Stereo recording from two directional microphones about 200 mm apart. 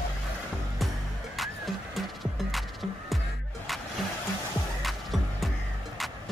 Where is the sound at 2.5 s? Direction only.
Centre (ahead or behind).